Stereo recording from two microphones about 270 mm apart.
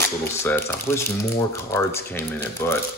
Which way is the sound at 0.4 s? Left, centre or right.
Centre.